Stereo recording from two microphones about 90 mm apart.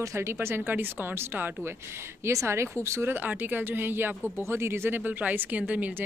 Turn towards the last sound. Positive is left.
turn(degrees=-15)  # may be behind; listen again after turning